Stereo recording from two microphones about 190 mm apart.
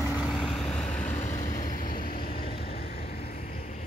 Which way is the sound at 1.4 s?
40° left (ahead or behind).